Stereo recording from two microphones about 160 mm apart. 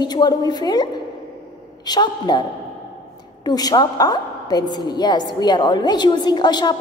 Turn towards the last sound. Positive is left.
turn(degrees=25)  # may be behind; listen again after turning